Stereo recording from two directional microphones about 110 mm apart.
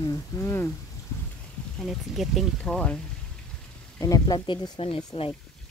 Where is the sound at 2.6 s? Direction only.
10° left (ahead or behind).